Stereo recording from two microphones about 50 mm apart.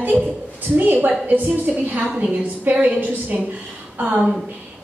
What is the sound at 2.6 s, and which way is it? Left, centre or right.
A woman's voice, right.